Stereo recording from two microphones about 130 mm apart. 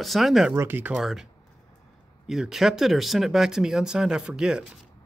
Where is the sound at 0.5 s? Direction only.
15° right (ahead or behind).